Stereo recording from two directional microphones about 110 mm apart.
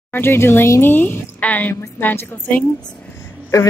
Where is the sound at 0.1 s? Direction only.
20° left (ahead or behind).